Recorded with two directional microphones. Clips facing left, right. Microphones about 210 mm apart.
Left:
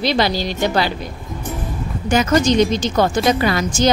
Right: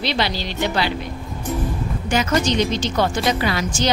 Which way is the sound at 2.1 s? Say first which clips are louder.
Left 5 dB; 45° left (ahead or behind).